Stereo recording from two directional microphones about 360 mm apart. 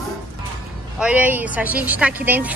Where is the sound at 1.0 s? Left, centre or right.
Centre.